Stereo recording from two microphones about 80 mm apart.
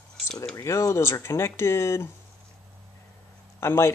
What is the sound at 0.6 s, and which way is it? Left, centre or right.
Speech, left.